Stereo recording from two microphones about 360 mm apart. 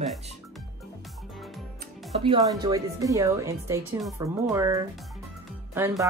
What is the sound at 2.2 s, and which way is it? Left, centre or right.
Speech, centre.